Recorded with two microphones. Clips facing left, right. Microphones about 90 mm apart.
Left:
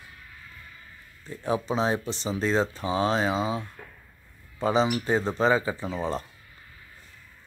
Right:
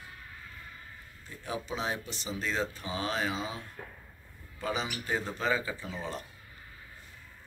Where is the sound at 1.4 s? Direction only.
35° left (ahead or behind).